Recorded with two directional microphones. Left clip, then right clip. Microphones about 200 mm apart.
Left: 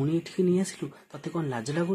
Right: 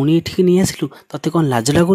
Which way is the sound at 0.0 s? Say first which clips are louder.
Right 12 dB; 50° right (ahead or behind).